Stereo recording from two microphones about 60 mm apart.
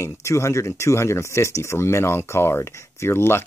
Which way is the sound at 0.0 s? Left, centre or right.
Left.